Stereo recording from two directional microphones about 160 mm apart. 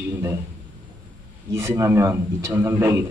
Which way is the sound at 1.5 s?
15° right (ahead or behind).